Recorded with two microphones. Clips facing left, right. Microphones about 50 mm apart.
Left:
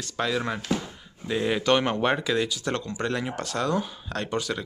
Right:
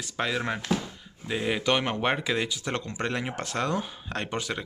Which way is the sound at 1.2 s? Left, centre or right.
Centre.